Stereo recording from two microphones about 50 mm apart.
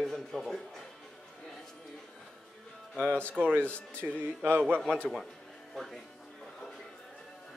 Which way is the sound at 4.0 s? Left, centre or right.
Right.